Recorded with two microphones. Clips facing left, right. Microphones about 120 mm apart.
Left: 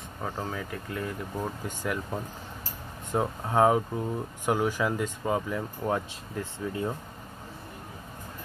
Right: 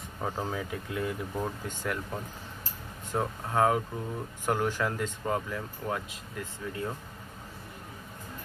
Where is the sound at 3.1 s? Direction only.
20° left (ahead or behind).